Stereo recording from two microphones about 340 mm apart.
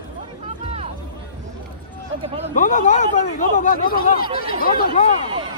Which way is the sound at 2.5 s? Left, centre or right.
Left.